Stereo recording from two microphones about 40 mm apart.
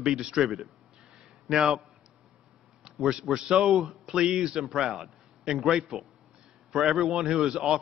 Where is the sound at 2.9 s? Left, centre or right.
Centre.